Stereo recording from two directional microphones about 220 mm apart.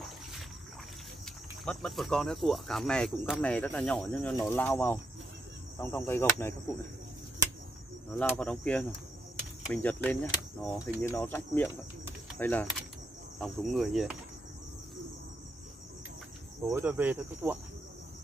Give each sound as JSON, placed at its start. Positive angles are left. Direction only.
{"t": 1.2, "sound": "speech", "side_deg": 0}
{"t": 8.1, "sound": "speech", "side_deg": 0}
{"t": 16.7, "sound": "speech", "side_deg": -10}